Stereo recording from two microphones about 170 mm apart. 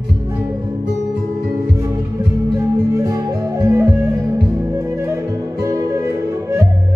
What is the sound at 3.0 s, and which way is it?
Music, 15° right (ahead or behind).